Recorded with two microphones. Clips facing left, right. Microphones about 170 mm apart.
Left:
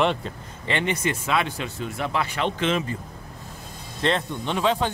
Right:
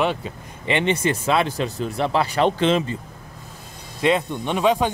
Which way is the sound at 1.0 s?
35° right (ahead or behind).